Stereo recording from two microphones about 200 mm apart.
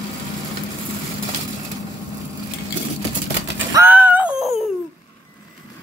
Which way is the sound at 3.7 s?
10° right (ahead or behind).